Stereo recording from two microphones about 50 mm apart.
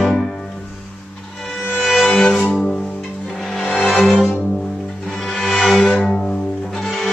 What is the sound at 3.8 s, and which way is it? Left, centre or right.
Music, centre.